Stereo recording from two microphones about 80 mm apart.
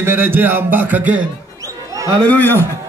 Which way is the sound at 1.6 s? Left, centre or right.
Right.